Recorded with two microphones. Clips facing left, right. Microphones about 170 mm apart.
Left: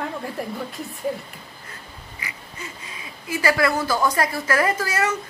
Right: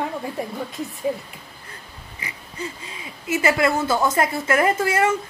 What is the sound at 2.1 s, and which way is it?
A woman's voice, 30° right (ahead or behind).